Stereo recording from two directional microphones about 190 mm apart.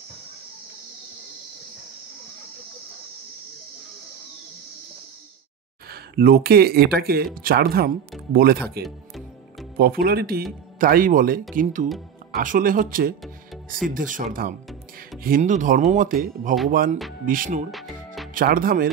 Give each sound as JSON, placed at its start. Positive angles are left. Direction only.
{"t": 5.9, "sound": "speech", "side_deg": -55}
{"t": 8.8, "sound": "music", "side_deg": 0}
{"t": 9.8, "sound": "speech", "side_deg": -50}
{"t": 17.6, "sound": "music", "side_deg": 0}
{"t": 18.3, "sound": "speech", "side_deg": -50}